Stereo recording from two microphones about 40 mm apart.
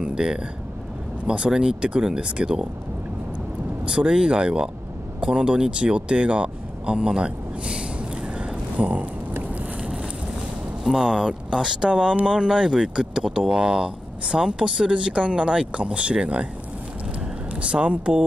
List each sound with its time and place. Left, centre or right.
0.0 s speech: right
3.8 s speech: right
8.4 s a sound: right
10.8 s speech: centre
17.6 s speech: right